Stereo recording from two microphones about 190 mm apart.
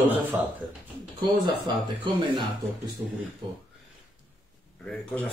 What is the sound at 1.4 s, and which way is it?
Speech, 25° right (ahead or behind).